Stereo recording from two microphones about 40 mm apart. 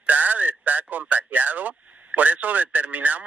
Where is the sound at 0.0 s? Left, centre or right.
Right.